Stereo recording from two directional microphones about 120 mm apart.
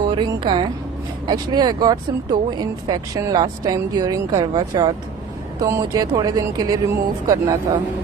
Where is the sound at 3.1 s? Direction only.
30° right (ahead or behind).